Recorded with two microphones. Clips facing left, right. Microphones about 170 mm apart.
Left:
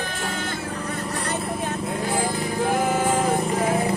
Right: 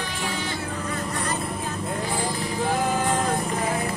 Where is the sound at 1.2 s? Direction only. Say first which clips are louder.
Left 2 dB; 70° left (ahead or behind).